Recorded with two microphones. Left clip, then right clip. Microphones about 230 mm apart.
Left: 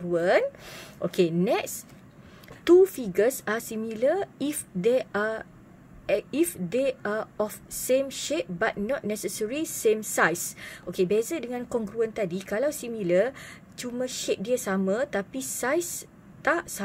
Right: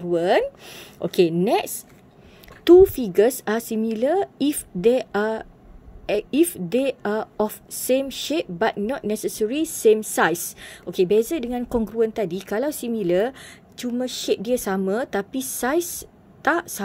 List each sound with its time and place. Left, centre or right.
0.1 s a woman's voice: centre